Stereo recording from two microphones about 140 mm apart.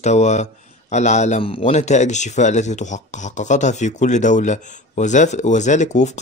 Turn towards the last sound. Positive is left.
turn(degrees=60)  # may be behind; listen again after turning